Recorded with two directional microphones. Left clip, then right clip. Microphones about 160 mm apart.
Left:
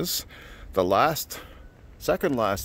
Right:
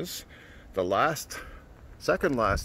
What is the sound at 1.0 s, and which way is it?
Speech, 35° left (ahead or behind).